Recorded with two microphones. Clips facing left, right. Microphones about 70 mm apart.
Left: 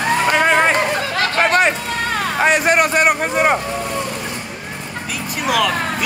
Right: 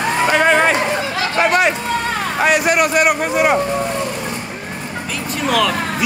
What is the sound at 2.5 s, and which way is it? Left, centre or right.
Speech, left.